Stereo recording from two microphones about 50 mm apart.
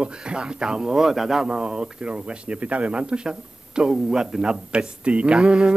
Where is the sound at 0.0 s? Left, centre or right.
Centre.